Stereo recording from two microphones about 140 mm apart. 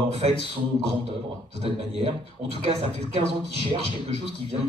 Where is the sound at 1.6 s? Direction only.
45° right (ahead or behind).